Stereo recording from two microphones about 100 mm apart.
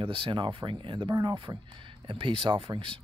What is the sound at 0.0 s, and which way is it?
Speech, 60° right (ahead or behind).